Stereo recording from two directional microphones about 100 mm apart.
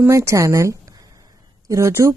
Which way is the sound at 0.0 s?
30° right (ahead or behind).